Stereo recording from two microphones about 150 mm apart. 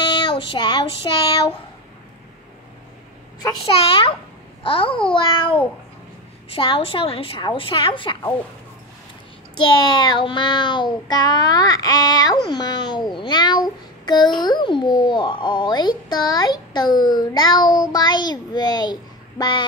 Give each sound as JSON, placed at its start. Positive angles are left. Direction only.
{"t": 0.1, "sound": "child singing", "side_deg": 30}
{"t": 1.1, "sound": "a woman's voice", "side_deg": 30}
{"t": 3.6, "sound": "a woman's voice", "side_deg": 35}
{"t": 9.6, "sound": "babbling", "side_deg": 30}